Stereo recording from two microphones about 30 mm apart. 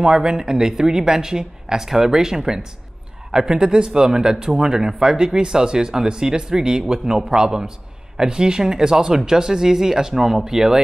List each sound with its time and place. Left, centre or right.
0.0 s speech: right